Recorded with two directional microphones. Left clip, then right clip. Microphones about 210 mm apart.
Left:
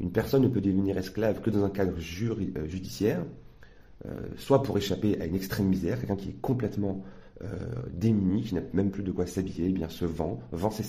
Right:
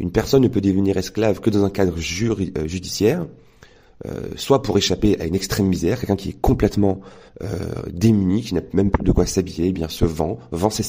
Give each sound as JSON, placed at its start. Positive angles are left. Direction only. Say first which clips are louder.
{"t": 0.0, "sound": "speech", "louder": "right 9 dB", "side_deg": -40}